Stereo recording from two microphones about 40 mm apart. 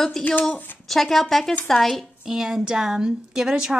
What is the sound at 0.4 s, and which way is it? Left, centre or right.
Speech, left.